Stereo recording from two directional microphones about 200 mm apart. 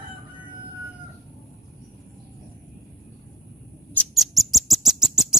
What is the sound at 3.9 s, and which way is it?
Rodents, 5° left (ahead or behind).